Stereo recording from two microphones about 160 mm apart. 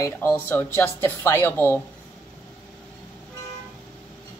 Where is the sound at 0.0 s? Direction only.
15° left (ahead or behind).